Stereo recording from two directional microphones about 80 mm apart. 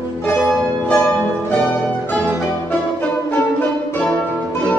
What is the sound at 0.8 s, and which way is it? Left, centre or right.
Music, centre.